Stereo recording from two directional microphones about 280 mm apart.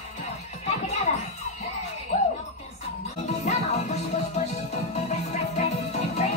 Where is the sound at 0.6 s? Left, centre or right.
Left.